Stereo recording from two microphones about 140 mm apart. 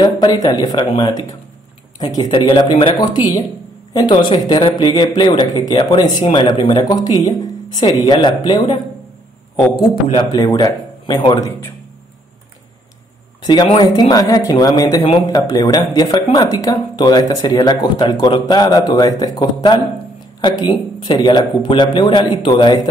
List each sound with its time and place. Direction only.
0.0 s speech: 30° left (ahead or behind)
2.3 s speech: 35° left (ahead or behind)
10.2 s speech: 25° left (ahead or behind)
13.4 s a sound: 30° left (ahead or behind)
13.7 s speech: 30° left (ahead or behind)